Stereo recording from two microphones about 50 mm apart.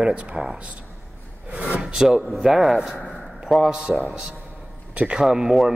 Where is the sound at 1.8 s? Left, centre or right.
Centre.